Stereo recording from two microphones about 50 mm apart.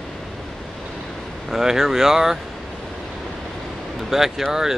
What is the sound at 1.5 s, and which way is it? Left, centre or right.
Speech, centre.